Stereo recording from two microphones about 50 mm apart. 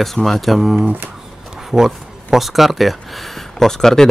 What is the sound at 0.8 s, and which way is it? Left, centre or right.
Speech, right.